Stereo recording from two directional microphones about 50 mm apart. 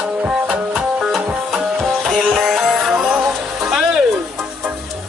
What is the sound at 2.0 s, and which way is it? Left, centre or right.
Music, centre.